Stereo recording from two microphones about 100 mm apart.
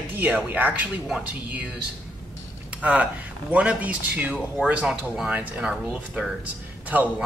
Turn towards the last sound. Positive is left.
turn(degrees=-15)  # may be behind; listen again after turning